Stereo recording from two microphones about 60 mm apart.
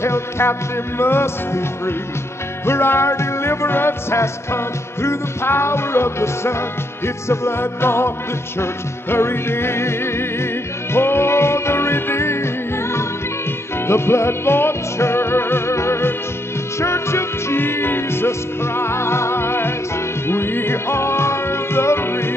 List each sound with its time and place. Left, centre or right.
0.0 s music: left
9.1 s music: left
13.8 s music: left